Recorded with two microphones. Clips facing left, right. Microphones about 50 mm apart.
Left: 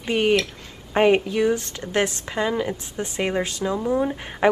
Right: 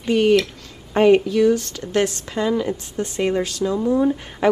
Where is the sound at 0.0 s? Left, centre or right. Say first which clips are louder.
Right 4 dB; left.